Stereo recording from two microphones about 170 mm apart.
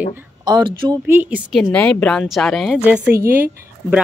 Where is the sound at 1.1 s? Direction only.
10° right (ahead or behind).